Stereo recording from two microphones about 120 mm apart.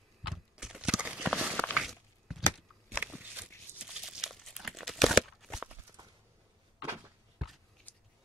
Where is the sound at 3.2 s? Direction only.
10° right (ahead or behind).